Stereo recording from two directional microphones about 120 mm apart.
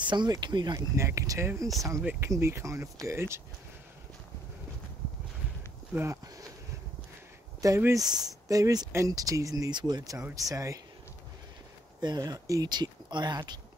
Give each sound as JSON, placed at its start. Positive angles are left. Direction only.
{"t": 0.0, "sound": "speech", "side_deg": -40}
{"t": 0.9, "sound": "speech", "side_deg": -25}
{"t": 7.6, "sound": "speech", "side_deg": -25}
{"t": 12.0, "sound": "speech", "side_deg": -35}